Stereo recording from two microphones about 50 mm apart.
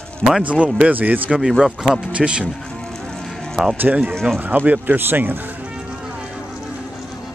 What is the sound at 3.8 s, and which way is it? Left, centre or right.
Speech, right.